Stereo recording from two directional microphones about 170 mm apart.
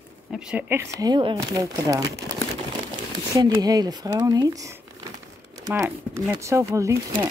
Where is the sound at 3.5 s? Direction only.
20° right (ahead or behind).